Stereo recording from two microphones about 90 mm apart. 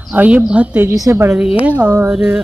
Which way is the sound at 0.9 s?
40° right (ahead or behind).